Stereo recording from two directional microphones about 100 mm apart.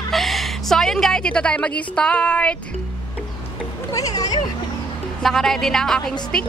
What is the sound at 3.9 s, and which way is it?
Speech, 35° left (ahead or behind).